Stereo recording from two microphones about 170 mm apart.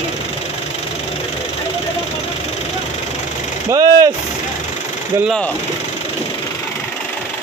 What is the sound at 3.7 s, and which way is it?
Vehicle, 20° right (ahead or behind).